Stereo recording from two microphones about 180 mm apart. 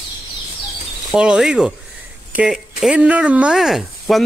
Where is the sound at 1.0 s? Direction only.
5° right (ahead or behind).